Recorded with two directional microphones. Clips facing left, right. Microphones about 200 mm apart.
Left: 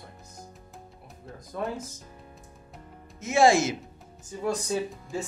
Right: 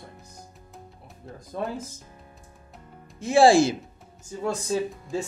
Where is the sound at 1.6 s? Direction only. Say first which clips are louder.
Right 1 dB; 30° right (ahead or behind).